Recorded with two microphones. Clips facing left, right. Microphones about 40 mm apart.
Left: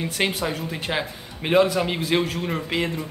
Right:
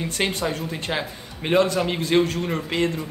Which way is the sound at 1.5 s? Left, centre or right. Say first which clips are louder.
Left 1 dB; centre.